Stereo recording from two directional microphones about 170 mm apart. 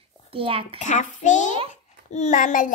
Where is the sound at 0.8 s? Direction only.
45° left (ahead or behind).